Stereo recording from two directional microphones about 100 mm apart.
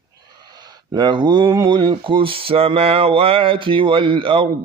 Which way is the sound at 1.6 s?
45° right (ahead or behind).